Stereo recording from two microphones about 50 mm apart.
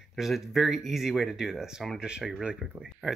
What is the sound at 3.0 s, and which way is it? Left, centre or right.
Speech, right.